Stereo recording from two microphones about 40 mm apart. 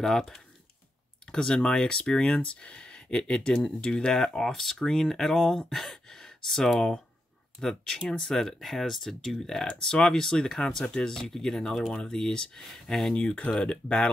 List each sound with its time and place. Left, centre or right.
0.0 s speech: centre; by 4.1 s left
4.4 s speech: centre
9.7 s speech: centre
13.1 s speech: left